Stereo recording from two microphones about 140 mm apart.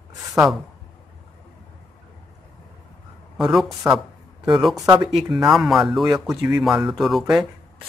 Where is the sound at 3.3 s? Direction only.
5° right (ahead or behind).